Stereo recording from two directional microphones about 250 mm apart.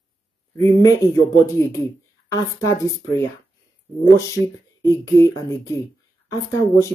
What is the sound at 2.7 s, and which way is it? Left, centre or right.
Speech, centre.